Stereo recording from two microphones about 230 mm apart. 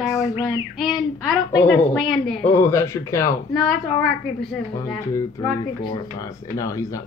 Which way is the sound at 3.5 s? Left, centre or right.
Centre.